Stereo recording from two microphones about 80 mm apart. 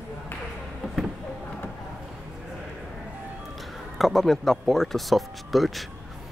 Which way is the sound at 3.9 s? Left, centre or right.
Centre.